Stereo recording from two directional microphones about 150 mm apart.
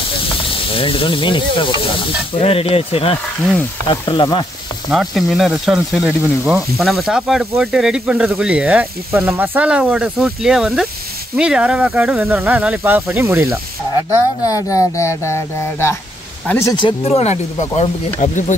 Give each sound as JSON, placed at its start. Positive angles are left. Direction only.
{"t": 0.7, "sound": "sizzle", "side_deg": 35}
{"t": 4.9, "sound": "speech", "side_deg": 0}
{"t": 14.4, "sound": "a man's voice", "side_deg": 20}
{"t": 17.0, "sound": "speech", "side_deg": 45}